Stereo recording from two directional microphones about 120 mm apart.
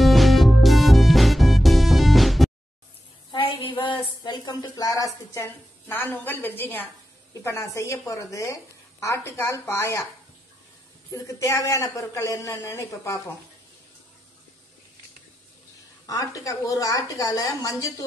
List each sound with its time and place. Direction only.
0.0 s music: centre (ahead or behind)
3.3 s a sound: 45° left (ahead or behind)
3.8 s a woman's voice: 40° left (ahead or behind); by 10.0 s 20° left (ahead or behind)
11.1 s speech: 30° left (ahead or behind)
16.1 s speech: 30° left (ahead or behind)